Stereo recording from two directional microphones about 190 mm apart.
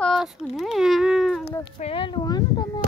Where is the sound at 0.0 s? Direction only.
Centre (ahead or behind).